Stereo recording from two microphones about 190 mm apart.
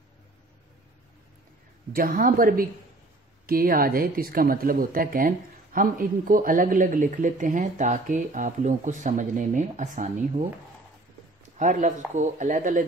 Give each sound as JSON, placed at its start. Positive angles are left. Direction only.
{"t": 1.9, "sound": "speech", "side_deg": -50}
{"t": 11.5, "sound": "speech", "side_deg": -40}